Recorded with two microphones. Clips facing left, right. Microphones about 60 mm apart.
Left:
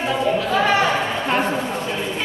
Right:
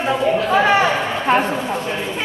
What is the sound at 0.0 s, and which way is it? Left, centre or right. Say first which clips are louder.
Speech: right 2 dB; right.